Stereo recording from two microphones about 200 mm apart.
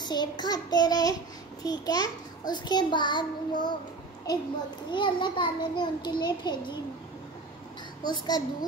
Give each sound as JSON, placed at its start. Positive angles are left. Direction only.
{"t": 0.0, "sound": "a child's voice", "side_deg": 20}
{"t": 4.9, "sound": "a child's voice", "side_deg": 25}
{"t": 8.0, "sound": "a child's voice", "side_deg": 20}